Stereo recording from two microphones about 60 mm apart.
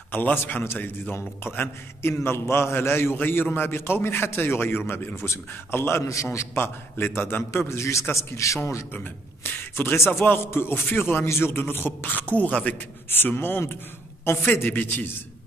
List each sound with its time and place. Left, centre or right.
0.1 s a man's voice: left
7.5 s a man's voice: left
9.4 s speech: left
9.8 s a man's voice: left